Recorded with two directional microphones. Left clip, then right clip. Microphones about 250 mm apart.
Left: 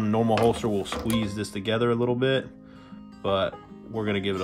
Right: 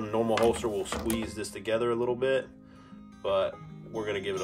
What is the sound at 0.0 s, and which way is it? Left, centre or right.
Filing, left.